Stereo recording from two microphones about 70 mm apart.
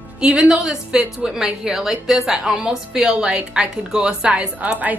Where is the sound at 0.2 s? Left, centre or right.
Centre.